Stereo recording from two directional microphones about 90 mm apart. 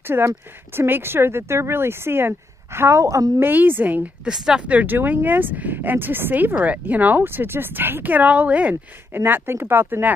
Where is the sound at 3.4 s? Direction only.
20° right (ahead or behind).